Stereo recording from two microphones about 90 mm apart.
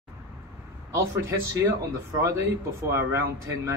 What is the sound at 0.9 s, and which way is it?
Speech, 30° right (ahead or behind).